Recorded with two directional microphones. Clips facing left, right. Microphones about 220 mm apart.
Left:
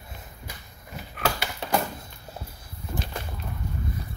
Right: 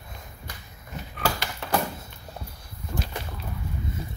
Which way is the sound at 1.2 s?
Centre (ahead or behind).